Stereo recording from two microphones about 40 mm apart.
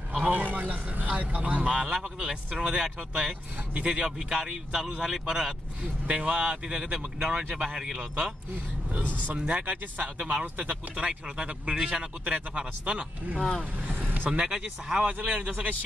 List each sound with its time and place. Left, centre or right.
0.3 s a man's voice: right
1.6 s speech: right
4.3 s speech: centre
6.0 s speech: right
6.8 s speech: centre
9.0 s speech: left
9.4 s speech: right
13.4 s speech: centre
14.0 s vehicle: right
14.4 s speech: right
15.1 s a man's voice: right